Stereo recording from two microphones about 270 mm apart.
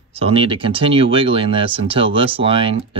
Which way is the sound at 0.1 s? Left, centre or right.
Right.